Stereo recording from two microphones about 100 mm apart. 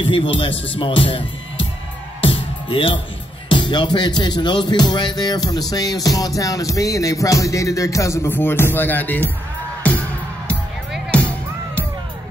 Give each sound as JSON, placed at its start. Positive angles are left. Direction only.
{"t": 0.0, "sound": "speech", "side_deg": 60}
{"t": 2.2, "sound": "music", "side_deg": 65}
{"t": 3.4, "sound": "speech", "side_deg": 50}